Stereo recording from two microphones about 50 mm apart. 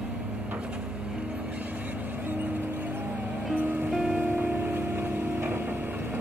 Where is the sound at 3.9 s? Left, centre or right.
Centre.